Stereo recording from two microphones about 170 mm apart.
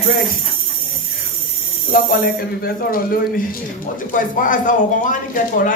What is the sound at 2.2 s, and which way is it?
A man's voice, 60° left (ahead or behind).